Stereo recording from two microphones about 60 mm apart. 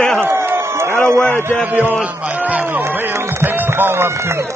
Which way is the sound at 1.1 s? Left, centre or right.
Right.